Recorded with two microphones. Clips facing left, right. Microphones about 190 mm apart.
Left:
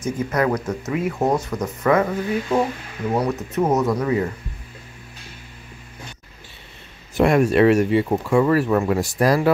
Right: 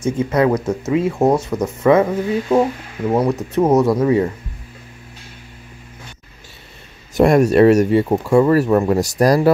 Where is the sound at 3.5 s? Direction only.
30° right (ahead or behind).